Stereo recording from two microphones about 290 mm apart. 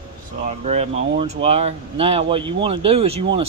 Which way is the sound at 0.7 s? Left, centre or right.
Right.